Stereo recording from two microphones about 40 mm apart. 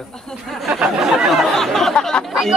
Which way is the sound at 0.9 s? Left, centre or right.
Centre.